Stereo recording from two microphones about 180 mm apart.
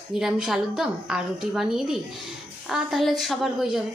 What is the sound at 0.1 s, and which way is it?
A woman's voice, centre (ahead or behind).